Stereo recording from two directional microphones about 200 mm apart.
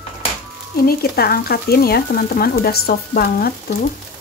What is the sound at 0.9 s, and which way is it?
Stir, 50° left (ahead or behind).